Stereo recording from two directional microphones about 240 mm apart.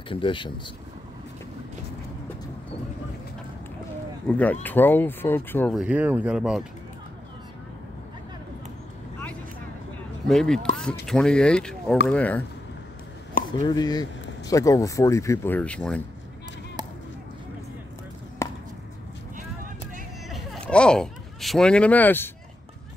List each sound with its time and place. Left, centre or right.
0.1 s speech: left
4.3 s speech: centre
5.8 s speech: centre
10.2 s speech: centre
13.7 s speech: centre
18.4 s chop: centre
20.2 s a sound: centre